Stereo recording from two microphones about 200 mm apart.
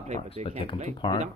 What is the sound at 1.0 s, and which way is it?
Speech, 25° left (ahead or behind).